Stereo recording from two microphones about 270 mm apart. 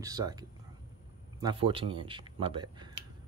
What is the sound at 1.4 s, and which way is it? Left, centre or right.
Speech, centre.